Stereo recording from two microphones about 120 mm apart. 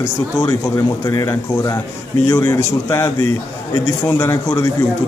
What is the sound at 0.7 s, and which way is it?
Speech, 20° left (ahead or behind).